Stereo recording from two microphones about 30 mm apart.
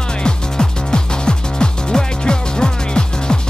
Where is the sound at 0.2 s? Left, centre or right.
Left.